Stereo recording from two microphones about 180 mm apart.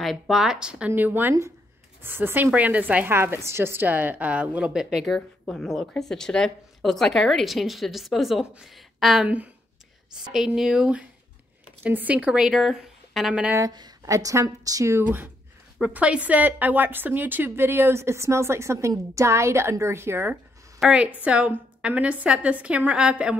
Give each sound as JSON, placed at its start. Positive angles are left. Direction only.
{"t": 0.0, "sound": "a woman's voice", "side_deg": 0}
{"t": 13.6, "sound": "a woman's voice", "side_deg": -20}